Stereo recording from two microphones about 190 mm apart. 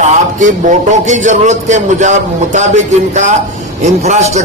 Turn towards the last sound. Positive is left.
turn(degrees=-35)  # may be behind; listen again after turning